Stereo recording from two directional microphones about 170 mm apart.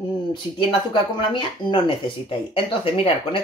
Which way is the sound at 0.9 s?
30° left (ahead or behind).